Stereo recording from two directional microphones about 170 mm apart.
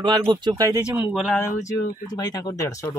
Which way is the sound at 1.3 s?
15° left (ahead or behind).